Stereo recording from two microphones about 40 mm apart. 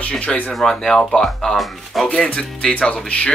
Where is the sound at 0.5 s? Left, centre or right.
Centre.